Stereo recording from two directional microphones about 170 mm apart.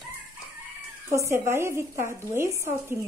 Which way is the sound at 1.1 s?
15° right (ahead or behind).